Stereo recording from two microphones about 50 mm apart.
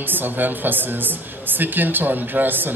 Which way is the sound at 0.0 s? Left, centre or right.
Right.